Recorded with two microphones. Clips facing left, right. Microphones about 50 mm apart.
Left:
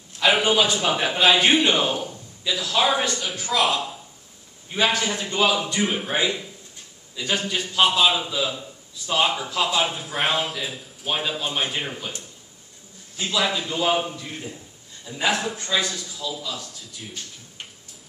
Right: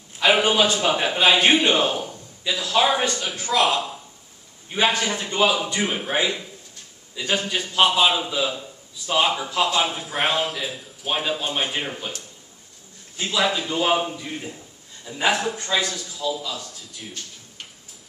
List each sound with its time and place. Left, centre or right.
0.2 s a sound: centre
0.8 s a man's voice: centre
4.6 s a man's voice: centre
7.2 s a man's voice: centre
13.2 s a man's voice: centre